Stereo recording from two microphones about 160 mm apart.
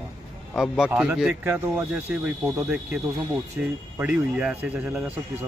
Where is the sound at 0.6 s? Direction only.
5° right (ahead or behind).